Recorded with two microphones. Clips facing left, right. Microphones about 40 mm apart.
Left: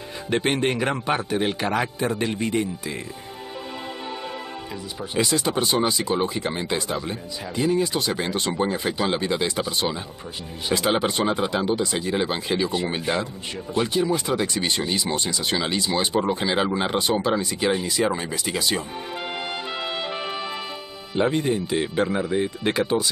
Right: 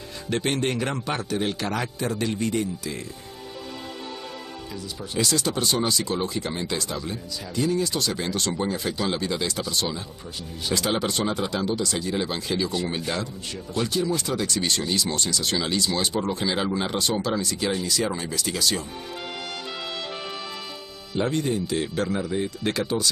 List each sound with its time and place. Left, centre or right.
0.3 s speech: left
5.1 s speech: left
21.1 s speech: left